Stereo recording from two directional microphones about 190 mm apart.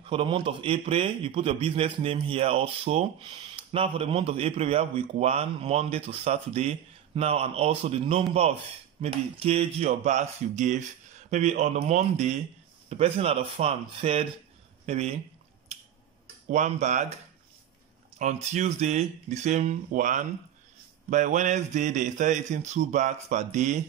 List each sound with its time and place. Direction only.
0.0 s a man's voice: 30° right (ahead or behind)
16.4 s speech: 40° right (ahead or behind)
18.2 s speech: 40° right (ahead or behind)